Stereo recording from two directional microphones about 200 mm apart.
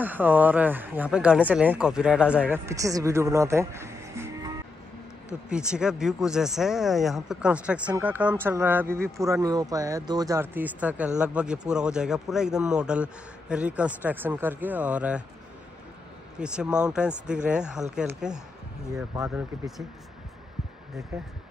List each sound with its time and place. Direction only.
0.0 s speech: 10° right (ahead or behind)
5.5 s speech: 5° right (ahead or behind)
16.3 s speech: 5° right (ahead or behind)
19.1 s speech: 15° right (ahead or behind)